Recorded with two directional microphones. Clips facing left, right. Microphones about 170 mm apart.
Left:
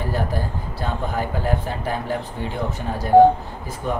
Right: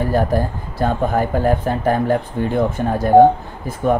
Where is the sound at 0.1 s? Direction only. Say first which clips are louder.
Right 7 dB; 50° right (ahead or behind).